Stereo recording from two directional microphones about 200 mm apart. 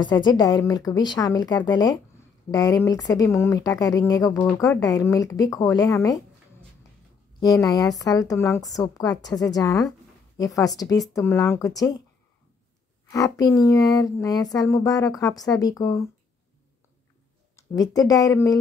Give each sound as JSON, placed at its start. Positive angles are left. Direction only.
{"t": 0.0, "sound": "a woman's voice", "side_deg": 20}
{"t": 7.5, "sound": "speech", "side_deg": 15}
{"t": 13.1, "sound": "speech", "side_deg": 15}
{"t": 17.6, "sound": "a woman's voice", "side_deg": 20}